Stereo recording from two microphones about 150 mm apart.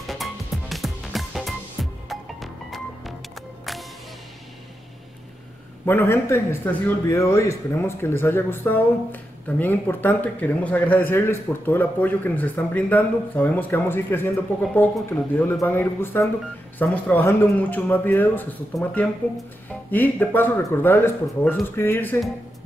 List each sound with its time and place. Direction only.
0.0 s music: centre (ahead or behind)
5.9 s a man's voice: 15° left (ahead or behind)